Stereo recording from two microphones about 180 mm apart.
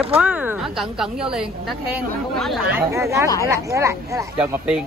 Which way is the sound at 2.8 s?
15° right (ahead or behind).